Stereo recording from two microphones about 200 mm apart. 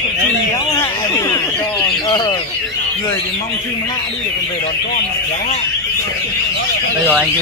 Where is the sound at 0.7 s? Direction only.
15° left (ahead or behind).